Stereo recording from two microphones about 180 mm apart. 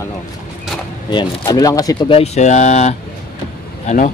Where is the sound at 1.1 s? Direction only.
20° left (ahead or behind).